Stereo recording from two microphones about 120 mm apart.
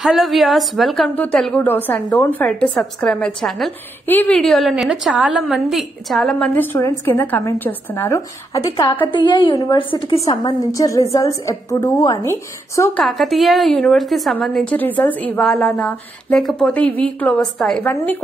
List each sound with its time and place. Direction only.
0.0 s a woman's voice: centre (ahead or behind)
4.0 s a woman's voice: 15° left (ahead or behind)
4.4 s a woman's voice: centre (ahead or behind)
6.5 s a woman's voice: 15° left (ahead or behind)
9.1 s a woman's voice: 40° left (ahead or behind)
10.3 s a woman's voice: 30° left (ahead or behind)
13.0 s a woman's voice: centre (ahead or behind)
15.4 s a woman's voice: 5° left (ahead or behind)